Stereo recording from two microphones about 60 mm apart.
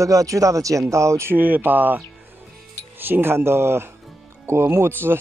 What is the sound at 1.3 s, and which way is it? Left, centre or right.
Speech, right.